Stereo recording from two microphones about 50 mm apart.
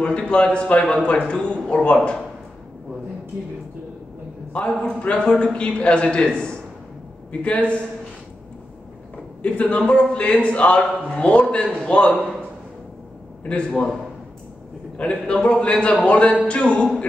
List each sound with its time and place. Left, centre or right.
0.0 s a man's voice: left
4.6 s a man's voice: left
9.4 s a man's voice: left
13.4 s a man's voice: left
15.0 s a man's voice: left